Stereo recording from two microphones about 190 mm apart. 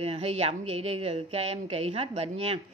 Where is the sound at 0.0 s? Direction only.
30° right (ahead or behind).